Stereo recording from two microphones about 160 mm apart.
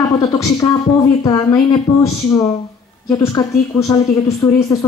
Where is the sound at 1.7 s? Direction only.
25° left (ahead or behind).